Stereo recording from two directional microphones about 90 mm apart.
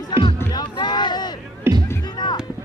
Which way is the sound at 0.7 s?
55° left (ahead or behind).